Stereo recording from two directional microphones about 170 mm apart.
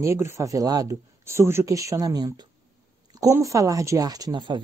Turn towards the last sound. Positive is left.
turn(degrees=-25)  # may be behind; listen again after turning